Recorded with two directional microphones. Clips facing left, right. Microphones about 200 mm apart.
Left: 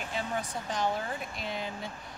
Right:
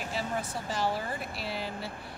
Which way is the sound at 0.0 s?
5° right (ahead or behind).